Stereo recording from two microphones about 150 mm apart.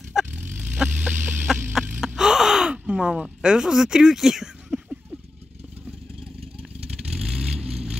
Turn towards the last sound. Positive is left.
turn(degrees=-5)  # may be behind; listen again after turning